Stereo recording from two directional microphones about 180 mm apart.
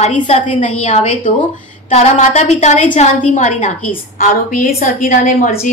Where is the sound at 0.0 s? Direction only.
40° left (ahead or behind).